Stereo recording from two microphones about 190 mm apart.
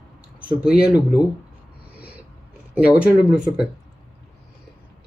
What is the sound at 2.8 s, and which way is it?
Speech, 5° right (ahead or behind).